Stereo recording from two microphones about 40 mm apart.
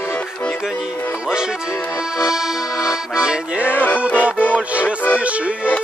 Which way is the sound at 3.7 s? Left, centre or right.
Left.